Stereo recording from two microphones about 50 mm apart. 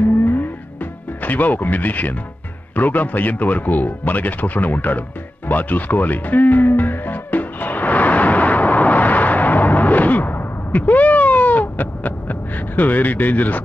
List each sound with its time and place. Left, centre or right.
0.2 s music: left
1.2 s speech: left
5.5 s music: left